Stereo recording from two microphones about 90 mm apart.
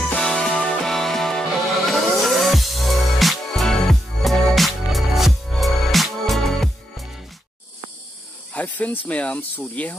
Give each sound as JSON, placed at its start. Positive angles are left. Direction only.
{"t": 0.0, "sound": "music", "side_deg": 5}
{"t": 8.5, "sound": "speech", "side_deg": 15}